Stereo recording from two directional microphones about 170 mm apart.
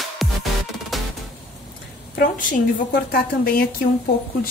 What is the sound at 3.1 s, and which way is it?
Speech, 60° left (ahead or behind).